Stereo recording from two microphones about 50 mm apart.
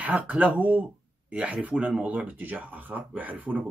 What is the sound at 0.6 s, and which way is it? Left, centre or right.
Speech, right.